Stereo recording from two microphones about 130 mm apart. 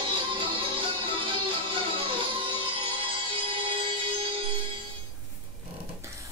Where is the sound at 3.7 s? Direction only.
40° right (ahead or behind).